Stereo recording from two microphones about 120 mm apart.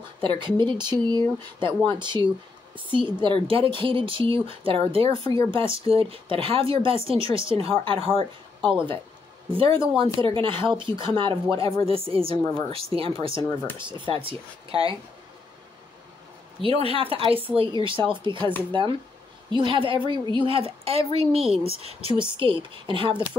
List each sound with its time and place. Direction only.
0.2 s speech: 45° right (ahead or behind)
13.3 s speech: 25° left (ahead or behind)
13.7 s speech: 40° right (ahead or behind)
16.6 s speech: 50° right (ahead or behind)